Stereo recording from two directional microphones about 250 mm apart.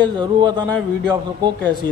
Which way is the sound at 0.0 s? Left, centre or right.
Centre.